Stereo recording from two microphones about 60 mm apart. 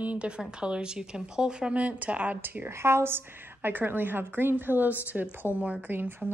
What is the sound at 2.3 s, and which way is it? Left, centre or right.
Speech, right.